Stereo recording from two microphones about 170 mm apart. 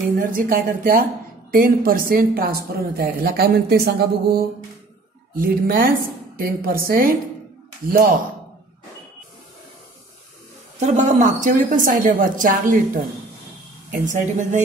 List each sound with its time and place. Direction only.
0.2 s a woman's voice: 55° right (ahead or behind)
10.8 s a woman's voice: 45° right (ahead or behind)